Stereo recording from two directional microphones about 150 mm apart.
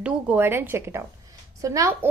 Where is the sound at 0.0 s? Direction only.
10° right (ahead or behind).